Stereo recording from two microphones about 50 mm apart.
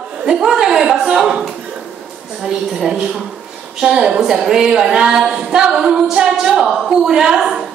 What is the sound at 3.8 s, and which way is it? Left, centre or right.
Speech, centre.